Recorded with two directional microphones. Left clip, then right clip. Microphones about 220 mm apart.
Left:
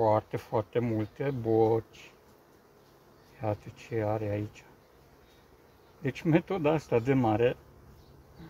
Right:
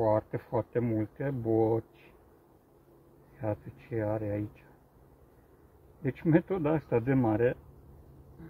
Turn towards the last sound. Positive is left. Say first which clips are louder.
# left 1 dB
turn(degrees=20)  # may be behind; listen again after turning